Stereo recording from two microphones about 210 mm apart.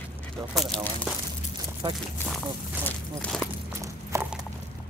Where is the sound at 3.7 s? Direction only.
15° right (ahead or behind).